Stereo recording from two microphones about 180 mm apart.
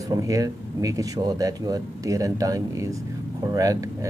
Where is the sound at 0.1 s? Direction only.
20° right (ahead or behind).